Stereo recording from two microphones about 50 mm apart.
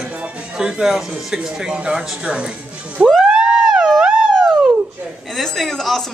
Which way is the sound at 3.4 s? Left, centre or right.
Centre.